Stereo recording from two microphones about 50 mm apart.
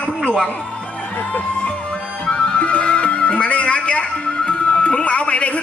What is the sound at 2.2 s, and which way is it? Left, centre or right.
Music, centre.